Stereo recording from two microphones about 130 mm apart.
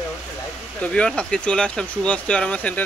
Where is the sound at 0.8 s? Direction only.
10° left (ahead or behind).